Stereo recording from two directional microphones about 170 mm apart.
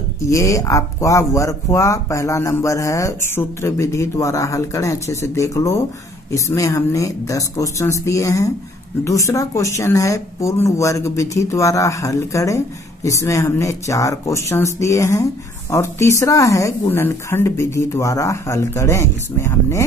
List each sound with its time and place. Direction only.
0.3 s speech: 20° left (ahead or behind)